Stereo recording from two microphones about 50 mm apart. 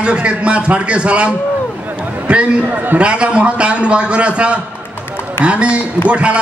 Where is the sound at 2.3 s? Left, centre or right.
Right.